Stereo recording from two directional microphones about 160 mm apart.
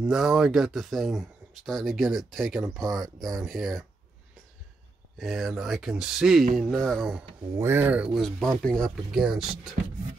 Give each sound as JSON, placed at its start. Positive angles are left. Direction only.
{"t": 0.0, "sound": "speech", "side_deg": -5}
{"t": 5.2, "sound": "speech", "side_deg": 0}
{"t": 7.5, "sound": "speech", "side_deg": -15}